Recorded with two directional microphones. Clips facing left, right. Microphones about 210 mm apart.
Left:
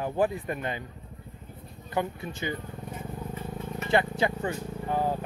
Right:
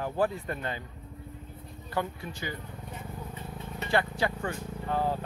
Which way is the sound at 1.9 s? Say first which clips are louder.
Left 3 dB; 20° left (ahead or behind).